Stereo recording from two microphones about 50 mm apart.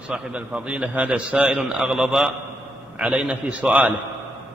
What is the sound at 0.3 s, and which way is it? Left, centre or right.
A man's voice, right.